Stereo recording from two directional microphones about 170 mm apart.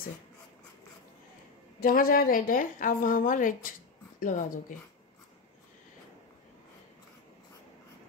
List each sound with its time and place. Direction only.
1.8 s a woman's voice: 60° left (ahead or behind)